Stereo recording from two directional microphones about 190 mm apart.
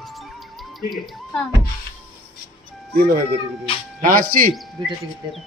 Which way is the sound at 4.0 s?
45° right (ahead or behind).